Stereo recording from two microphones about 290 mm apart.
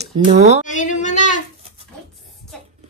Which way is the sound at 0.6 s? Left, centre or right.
Left.